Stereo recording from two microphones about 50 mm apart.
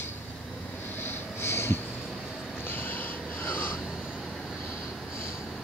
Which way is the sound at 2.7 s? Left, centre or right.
Left.